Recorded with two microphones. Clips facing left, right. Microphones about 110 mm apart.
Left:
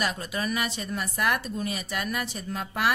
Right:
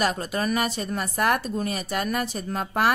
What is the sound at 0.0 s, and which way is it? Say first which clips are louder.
A woman's voice: right 5 dB; 45° right (ahead or behind).